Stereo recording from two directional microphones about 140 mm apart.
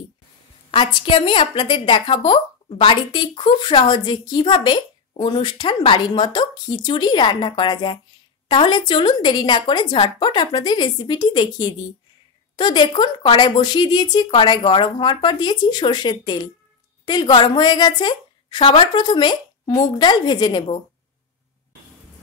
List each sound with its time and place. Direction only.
0.7 s a woman's voice: 35° left (ahead or behind)